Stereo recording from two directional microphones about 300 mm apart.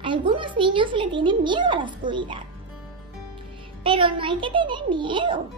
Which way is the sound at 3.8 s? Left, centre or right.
Centre.